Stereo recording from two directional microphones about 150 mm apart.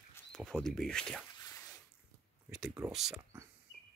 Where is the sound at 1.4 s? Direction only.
25° left (ahead or behind).